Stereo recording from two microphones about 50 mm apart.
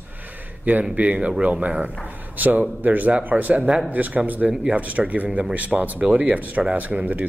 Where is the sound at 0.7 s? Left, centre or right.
Right.